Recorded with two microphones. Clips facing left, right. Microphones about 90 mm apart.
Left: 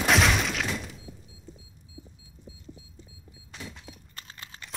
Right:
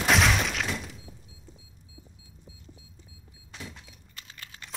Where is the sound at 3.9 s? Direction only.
40° left (ahead or behind).